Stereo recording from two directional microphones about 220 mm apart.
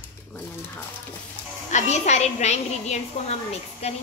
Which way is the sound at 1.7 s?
30° left (ahead or behind).